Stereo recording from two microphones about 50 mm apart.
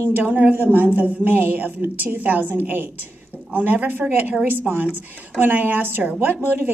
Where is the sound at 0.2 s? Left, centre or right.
Right.